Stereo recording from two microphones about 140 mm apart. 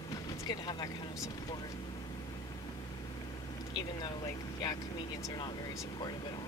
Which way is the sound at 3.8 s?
30° left (ahead or behind).